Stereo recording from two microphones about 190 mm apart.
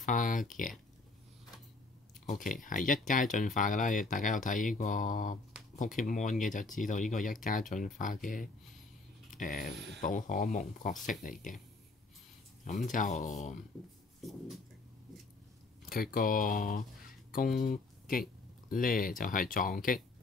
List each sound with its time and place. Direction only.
0.0 s speech: 45° left (ahead or behind)
2.2 s speech: 45° left (ahead or behind)
12.6 s speech: 40° left (ahead or behind)
15.9 s speech: 50° left (ahead or behind)